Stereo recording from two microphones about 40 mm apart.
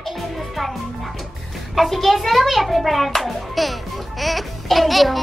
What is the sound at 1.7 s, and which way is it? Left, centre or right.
A child's voice, centre.